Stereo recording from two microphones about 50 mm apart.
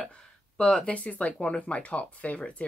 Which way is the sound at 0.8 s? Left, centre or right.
Left.